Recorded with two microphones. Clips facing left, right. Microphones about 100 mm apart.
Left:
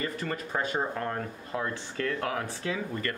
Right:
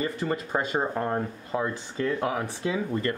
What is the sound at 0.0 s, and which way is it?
Speech, 20° right (ahead or behind).